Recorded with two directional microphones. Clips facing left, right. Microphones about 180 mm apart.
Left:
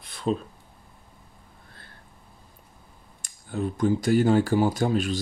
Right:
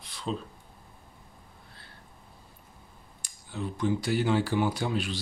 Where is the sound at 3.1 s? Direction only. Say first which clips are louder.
Left 7 dB; 50° left (ahead or behind).